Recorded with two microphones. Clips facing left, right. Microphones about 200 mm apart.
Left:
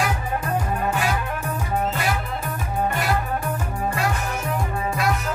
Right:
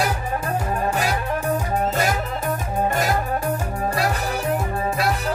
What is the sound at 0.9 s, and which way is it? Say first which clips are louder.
Music: right 2 dB; 40° right (ahead or behind).